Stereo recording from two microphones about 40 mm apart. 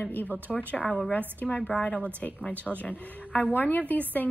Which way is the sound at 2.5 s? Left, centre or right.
Right.